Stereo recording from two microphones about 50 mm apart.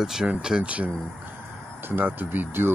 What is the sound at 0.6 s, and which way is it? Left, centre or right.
Speech, right.